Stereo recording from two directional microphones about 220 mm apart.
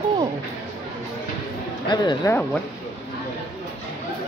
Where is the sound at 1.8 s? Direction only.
20° left (ahead or behind).